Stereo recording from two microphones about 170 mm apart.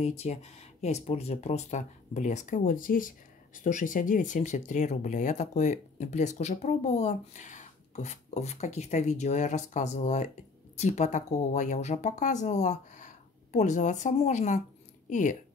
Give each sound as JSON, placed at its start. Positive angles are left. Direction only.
{"t": 0.0, "sound": "speech", "side_deg": 40}